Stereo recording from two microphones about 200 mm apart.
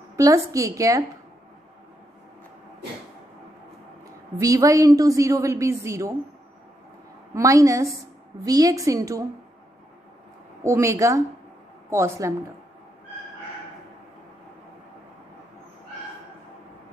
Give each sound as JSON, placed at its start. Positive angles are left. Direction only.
{"t": 0.1, "sound": "a woman's voice", "side_deg": -15}
{"t": 4.4, "sound": "a woman's voice", "side_deg": -15}
{"t": 7.3, "sound": "a woman's voice", "side_deg": -15}
{"t": 10.6, "sound": "a woman's voice", "side_deg": -15}